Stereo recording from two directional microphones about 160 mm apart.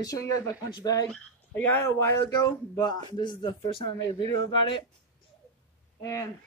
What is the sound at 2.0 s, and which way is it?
Speech, 25° left (ahead or behind).